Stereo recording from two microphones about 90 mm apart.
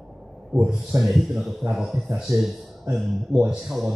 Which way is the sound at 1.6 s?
5° right (ahead or behind).